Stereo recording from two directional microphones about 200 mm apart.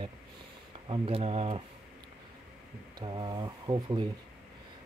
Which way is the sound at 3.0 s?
20° right (ahead or behind).